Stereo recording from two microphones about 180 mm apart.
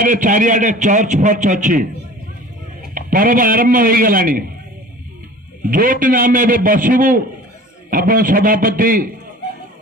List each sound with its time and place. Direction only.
0.0 s a man's voice: 45° right (ahead or behind)
2.9 s a man's voice: 50° right (ahead or behind)
5.7 s a man's voice: 50° right (ahead or behind)